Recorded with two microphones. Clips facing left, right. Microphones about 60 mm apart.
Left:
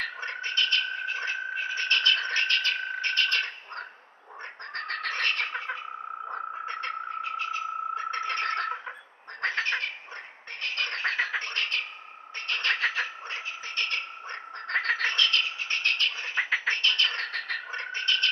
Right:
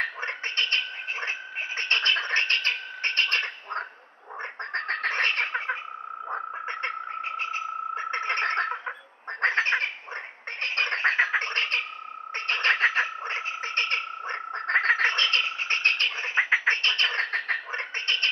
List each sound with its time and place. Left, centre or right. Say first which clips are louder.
0.0 s a sound: right 3 dB; right
1.0 s frog: left 1 dB; right
2.0 s a sound: right 1 dB; right
4.7 s bird: right 4 dB; right
6.6 s frog: right 1 dB; right
8.3 s fowl: right 5 dB; right
9.4 s duck: right 5 dB; right
10.6 s frog: right 5 dB; right
15.9 s bird: right 2 dB; right
16.6 s a sound: right 2 dB; right